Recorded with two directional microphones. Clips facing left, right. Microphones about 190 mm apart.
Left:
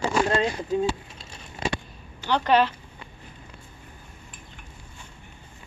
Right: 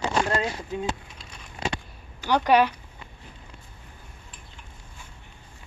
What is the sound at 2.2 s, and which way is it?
Speech, 10° right (ahead or behind).